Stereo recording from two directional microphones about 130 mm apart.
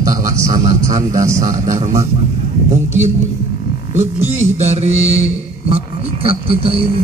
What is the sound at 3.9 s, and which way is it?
A man's voice, 55° right (ahead or behind).